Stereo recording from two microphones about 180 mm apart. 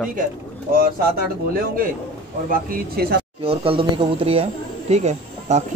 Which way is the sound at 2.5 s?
55° right (ahead or behind).